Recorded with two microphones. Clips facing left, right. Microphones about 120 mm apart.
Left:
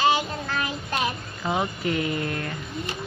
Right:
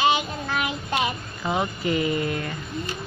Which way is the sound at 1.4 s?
Centre (ahead or behind).